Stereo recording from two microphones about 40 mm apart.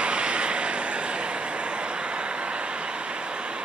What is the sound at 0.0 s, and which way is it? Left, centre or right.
Vehicle, right.